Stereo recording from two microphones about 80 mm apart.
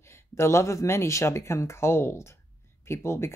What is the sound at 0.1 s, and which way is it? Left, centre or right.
Speech, left.